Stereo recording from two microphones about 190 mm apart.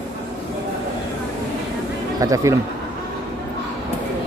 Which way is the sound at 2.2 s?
15° right (ahead or behind).